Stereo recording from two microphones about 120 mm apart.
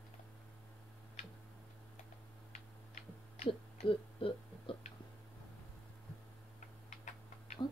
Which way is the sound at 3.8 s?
50° left (ahead or behind).